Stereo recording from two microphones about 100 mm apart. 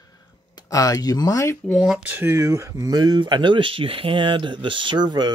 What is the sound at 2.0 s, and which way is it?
Speech, 15° right (ahead or behind).